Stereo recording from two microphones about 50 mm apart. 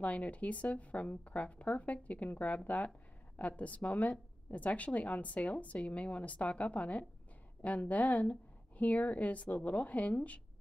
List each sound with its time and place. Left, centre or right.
0.0 s a woman's voice: left